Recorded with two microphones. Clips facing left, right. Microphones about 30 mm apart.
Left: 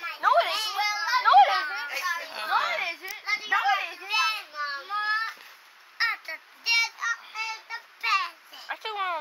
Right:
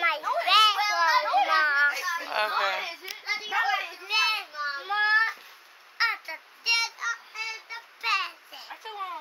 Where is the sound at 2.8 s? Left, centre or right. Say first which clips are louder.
Left 4 dB; centre.